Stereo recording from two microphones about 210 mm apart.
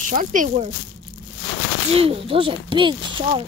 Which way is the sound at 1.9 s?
25° right (ahead or behind).